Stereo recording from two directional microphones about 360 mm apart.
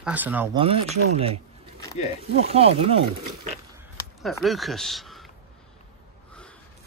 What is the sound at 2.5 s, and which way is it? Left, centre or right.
Speech, centre.